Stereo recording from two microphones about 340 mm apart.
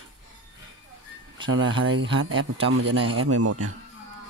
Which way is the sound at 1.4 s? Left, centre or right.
Right.